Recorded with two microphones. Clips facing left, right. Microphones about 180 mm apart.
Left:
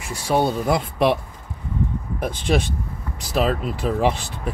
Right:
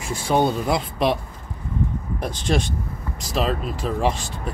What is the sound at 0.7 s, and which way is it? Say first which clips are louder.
Speech: left 2 dB; 55° left (ahead or behind).